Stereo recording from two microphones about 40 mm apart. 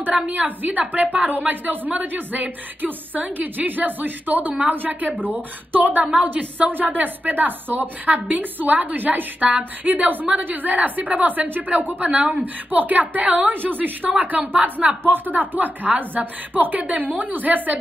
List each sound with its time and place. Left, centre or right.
0.1 s a woman's voice: right
13.5 s a woman's voice: right